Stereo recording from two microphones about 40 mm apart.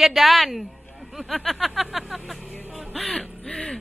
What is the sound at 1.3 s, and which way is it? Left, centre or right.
Music, centre.